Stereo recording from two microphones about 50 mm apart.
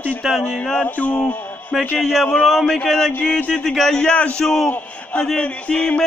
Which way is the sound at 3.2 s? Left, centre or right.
Left.